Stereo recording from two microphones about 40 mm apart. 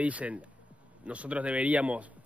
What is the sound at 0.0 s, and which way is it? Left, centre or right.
A man's voice, right.